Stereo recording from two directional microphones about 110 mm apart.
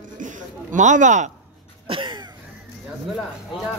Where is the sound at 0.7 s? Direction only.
90° right.